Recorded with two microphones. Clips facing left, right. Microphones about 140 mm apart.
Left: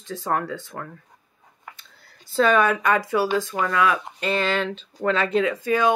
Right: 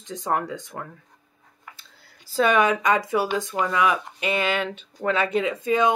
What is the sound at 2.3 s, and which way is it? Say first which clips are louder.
Speech: left 1 dB; 10° right (ahead or behind).